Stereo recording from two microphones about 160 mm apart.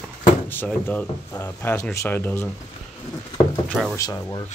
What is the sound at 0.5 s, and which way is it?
Speech, 10° left (ahead or behind).